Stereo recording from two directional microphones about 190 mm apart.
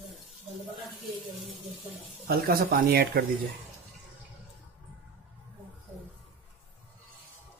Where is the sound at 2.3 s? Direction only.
50° right (ahead or behind).